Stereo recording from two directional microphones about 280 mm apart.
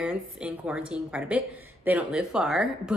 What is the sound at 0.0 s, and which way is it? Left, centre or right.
A woman's voice, centre.